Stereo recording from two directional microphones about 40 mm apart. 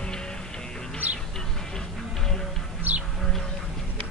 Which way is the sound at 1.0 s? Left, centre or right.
Right.